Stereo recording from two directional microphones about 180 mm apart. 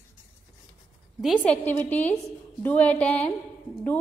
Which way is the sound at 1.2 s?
Centre (ahead or behind).